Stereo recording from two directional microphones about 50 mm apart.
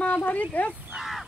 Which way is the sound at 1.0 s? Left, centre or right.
Centre.